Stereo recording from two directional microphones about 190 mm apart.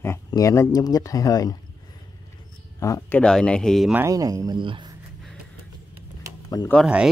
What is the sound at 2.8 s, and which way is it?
Speech, 15° left (ahead or behind).